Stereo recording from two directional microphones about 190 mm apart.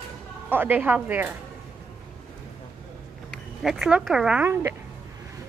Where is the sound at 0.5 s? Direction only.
10° right (ahead or behind).